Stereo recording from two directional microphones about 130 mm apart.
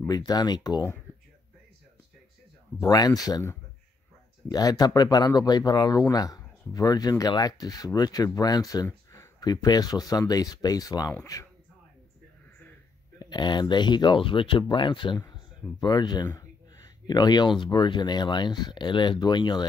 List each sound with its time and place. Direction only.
0.0 s speech: 30° left (ahead or behind)
2.8 s speech: 30° left (ahead or behind)
13.2 s speech: 35° left (ahead or behind)